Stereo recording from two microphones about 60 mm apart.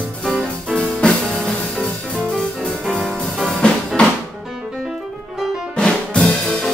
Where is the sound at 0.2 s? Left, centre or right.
Centre.